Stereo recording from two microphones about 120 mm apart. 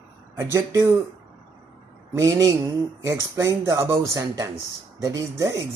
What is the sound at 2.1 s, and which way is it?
Speech, 25° right (ahead or behind).